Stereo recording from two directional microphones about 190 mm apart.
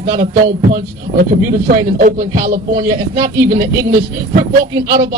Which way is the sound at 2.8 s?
15° right (ahead or behind).